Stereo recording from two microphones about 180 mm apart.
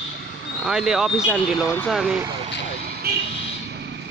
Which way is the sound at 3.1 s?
60° right (ahead or behind).